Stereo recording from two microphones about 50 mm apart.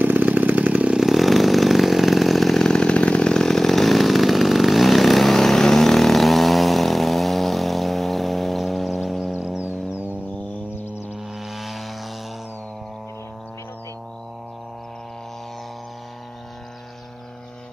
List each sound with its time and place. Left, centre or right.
0.0 s chainsaw: right
0.9 s chainsaw: centre
2.7 s chainsaw: centre
11.4 s vehicle: centre